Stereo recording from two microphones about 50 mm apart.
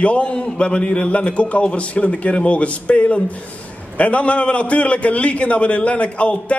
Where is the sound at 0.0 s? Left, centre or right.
Left.